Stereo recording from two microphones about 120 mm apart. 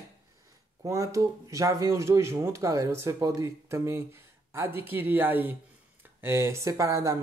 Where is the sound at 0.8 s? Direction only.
25° right (ahead or behind).